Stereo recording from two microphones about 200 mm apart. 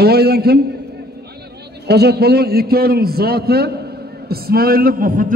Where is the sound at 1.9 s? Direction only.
55° right (ahead or behind).